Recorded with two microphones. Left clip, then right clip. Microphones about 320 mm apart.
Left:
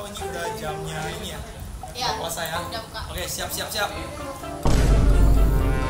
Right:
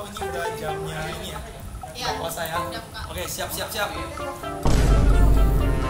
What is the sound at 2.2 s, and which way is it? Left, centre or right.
Music, centre.